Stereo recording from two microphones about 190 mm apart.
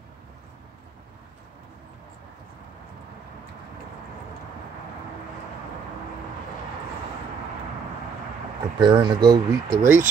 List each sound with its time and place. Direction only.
8.7 s speech: 25° right (ahead or behind)